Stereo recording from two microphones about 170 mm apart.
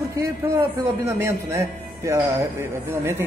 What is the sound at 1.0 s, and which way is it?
Speech, 15° right (ahead or behind).